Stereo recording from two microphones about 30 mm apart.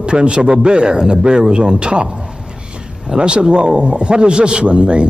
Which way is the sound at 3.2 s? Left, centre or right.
Right.